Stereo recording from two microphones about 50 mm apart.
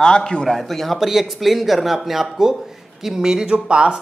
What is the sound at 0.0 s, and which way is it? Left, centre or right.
Speech, centre.